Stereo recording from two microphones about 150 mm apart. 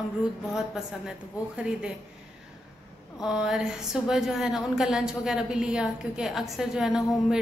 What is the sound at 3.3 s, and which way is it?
A woman's voice, 5° right (ahead or behind).